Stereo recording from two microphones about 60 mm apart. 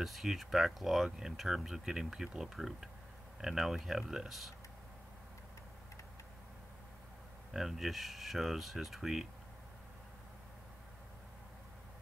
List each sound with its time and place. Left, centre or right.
0.0 s speech: centre
7.5 s speech: centre